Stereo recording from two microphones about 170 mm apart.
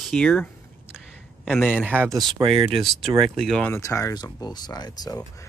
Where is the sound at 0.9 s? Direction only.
Centre (ahead or behind).